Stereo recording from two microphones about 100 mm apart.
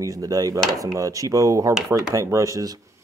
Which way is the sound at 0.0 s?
35° right (ahead or behind).